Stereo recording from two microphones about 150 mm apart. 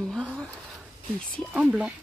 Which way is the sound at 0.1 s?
5° left (ahead or behind).